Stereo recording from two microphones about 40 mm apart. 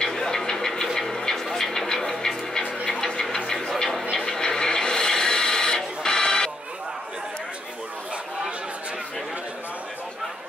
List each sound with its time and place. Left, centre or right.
0.0 s a sound: centre
0.9 s music: centre
4.2 s printer: centre
6.0 s music: centre